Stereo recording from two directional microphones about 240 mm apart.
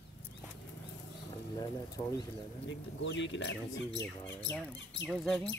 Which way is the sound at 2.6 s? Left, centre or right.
Left.